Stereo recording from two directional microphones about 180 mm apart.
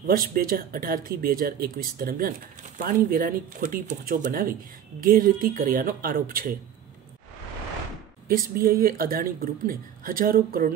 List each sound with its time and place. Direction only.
0.0 s speech: 55° right (ahead or behind)
8.3 s speech: 55° right (ahead or behind)